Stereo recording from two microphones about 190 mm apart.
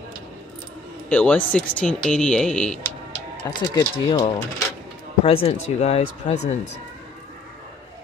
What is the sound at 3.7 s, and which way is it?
Speech, 20° left (ahead or behind).